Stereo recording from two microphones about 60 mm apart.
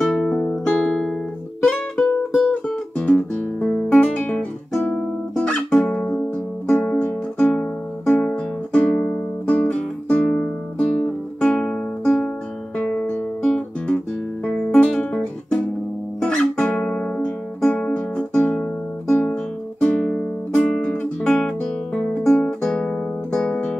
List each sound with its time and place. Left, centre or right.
0.0 s music: centre
3.0 s guitar: centre
4.7 s music: centre
6.7 s music: left
8.2 s music: centre
11.4 s guitar: centre
12.7 s music: left
13.8 s guitar: left
17.6 s music: left
19.8 s music: centre
21.4 s guitar: centre